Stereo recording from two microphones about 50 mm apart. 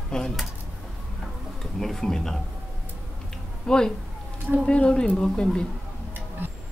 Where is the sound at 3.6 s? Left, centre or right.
Centre.